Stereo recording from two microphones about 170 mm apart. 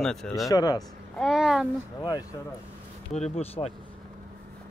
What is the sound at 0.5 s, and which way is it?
Speech, 20° left (ahead or behind).